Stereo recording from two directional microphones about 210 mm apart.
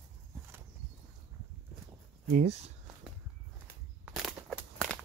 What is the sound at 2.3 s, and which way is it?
Speech, 30° right (ahead or behind).